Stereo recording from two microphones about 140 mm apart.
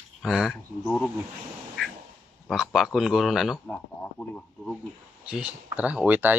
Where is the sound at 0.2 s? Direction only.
5° right (ahead or behind).